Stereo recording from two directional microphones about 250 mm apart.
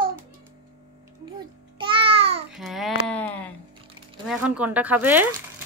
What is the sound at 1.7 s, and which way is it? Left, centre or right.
Babbling, right.